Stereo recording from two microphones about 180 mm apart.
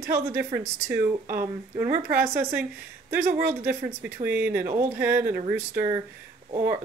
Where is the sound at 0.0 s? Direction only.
15° right (ahead or behind).